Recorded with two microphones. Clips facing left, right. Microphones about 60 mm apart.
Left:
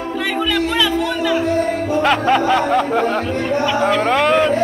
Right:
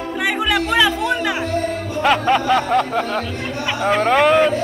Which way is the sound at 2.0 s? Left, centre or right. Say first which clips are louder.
Right 1 dB; centre.